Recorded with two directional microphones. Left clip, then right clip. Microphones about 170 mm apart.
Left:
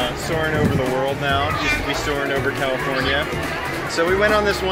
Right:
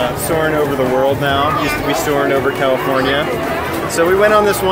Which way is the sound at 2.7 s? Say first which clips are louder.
Right 6 dB; 25° left (ahead or behind).